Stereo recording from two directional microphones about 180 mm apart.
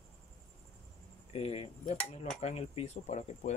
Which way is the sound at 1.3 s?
35° left (ahead or behind).